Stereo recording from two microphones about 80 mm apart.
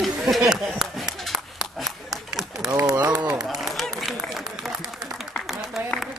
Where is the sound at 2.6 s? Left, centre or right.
Right.